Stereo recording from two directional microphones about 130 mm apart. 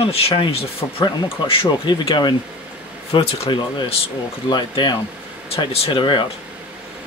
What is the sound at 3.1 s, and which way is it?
Speech, 50° left (ahead or behind).